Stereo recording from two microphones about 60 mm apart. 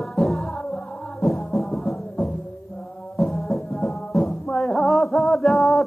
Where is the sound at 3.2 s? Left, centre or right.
Centre.